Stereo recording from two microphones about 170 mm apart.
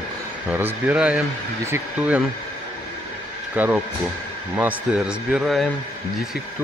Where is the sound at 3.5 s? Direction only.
10° right (ahead or behind).